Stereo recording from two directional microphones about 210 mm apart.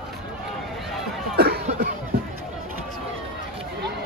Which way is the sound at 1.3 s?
50° right (ahead or behind).